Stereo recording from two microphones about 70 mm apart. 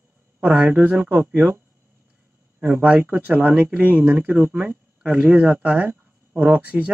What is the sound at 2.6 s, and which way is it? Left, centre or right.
Speech, right.